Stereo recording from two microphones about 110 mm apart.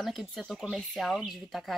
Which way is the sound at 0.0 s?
Centre (ahead or behind).